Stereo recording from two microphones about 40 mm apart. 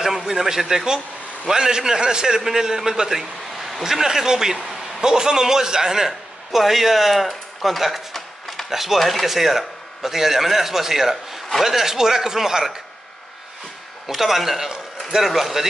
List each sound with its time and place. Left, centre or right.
0.0 s a man's voice: centre
14.0 s a man's voice: centre